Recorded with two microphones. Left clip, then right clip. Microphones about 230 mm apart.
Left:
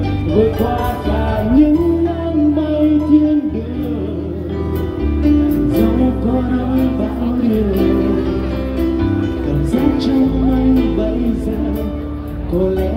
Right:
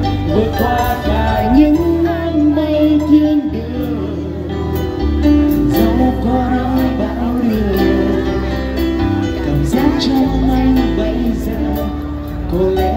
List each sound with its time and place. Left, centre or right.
0.3 s music: right
5.2 s music: right
7.7 s music: right
10.5 s music: right